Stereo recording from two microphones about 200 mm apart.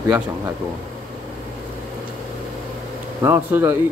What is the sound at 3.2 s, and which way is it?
Speech, 10° right (ahead or behind).